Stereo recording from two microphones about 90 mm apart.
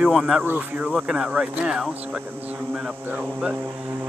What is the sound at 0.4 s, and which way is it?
Speech, 20° right (ahead or behind).